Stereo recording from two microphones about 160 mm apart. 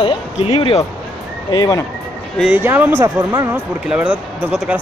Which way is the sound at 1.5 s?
25° left (ahead or behind).